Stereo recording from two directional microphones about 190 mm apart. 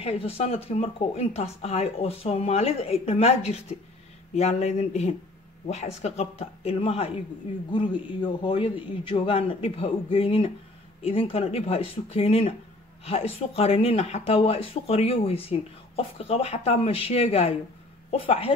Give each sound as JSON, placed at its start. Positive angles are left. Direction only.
{"t": 0.0, "sound": "a man's voice", "side_deg": 30}